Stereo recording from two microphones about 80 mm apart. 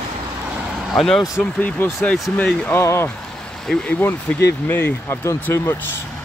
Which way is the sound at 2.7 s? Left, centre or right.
Left.